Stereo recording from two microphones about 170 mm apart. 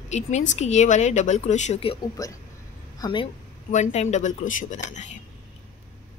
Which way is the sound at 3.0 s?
30° left (ahead or behind).